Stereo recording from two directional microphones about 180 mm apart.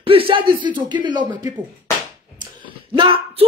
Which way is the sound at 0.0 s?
30° right (ahead or behind).